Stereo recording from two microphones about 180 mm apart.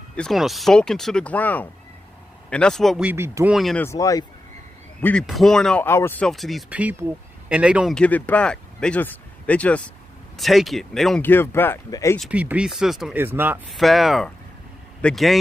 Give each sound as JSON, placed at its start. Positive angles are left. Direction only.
{"t": 0.1, "sound": "speech", "side_deg": 0}
{"t": 3.5, "sound": "speech", "side_deg": 0}
{"t": 3.8, "sound": "speech", "side_deg": 15}
{"t": 5.0, "sound": "speech", "side_deg": 5}
{"t": 12.2, "sound": "speech", "side_deg": -5}
{"t": 13.2, "sound": "speech", "side_deg": -10}
{"t": 13.7, "sound": "speech", "side_deg": 0}